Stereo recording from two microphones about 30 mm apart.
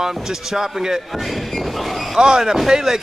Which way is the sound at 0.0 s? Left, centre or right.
Centre.